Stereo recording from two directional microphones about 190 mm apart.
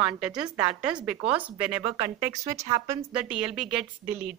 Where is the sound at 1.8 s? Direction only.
20° right (ahead or behind).